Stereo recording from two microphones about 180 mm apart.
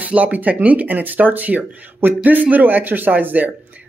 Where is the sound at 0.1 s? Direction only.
10° right (ahead or behind).